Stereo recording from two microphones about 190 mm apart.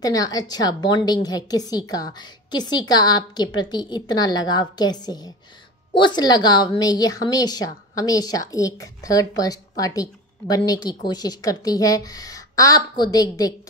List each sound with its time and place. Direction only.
0.0 s a woman's voice: 20° left (ahead or behind)